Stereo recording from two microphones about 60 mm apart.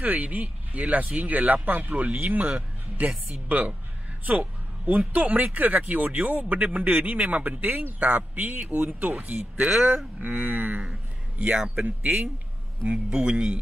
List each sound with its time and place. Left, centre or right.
0.0 s speech: right
3.1 s a man's voice: centre
3.4 s speech: right
4.8 s a man's voice: right